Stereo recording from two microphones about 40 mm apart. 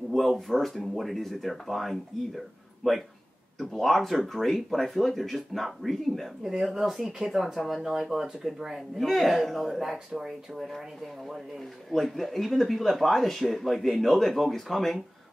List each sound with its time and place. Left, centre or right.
0.1 s speech: centre
6.4 s speech: centre
11.9 s speech: centre